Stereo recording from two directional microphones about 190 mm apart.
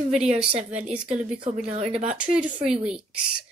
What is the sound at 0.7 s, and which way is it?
Speech, 35° right (ahead or behind).